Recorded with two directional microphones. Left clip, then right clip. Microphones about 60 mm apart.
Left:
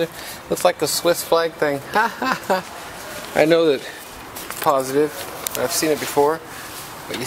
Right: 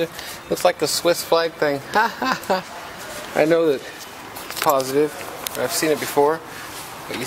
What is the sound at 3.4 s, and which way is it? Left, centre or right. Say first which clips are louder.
Speech: left 2 dB; left.